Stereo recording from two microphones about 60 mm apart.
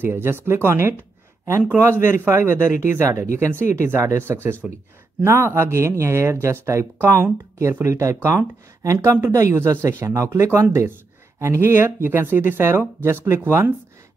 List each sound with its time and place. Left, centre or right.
0.0 s speech: right
7.8 s speech: right
9.6 s speech: right